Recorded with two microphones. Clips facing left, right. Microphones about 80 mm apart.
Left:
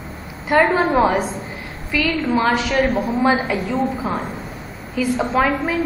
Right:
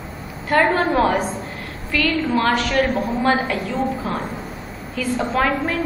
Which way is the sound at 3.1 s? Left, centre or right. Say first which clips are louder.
Left 2 dB; centre.